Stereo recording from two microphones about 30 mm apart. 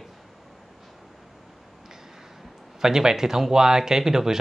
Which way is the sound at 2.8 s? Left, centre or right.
Centre.